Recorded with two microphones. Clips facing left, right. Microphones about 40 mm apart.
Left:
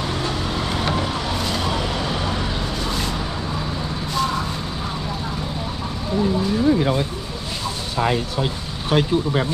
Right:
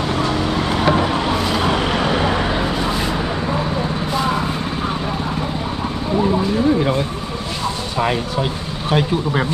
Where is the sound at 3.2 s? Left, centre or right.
Right.